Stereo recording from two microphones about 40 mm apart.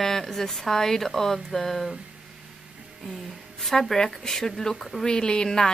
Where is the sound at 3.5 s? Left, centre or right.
Centre.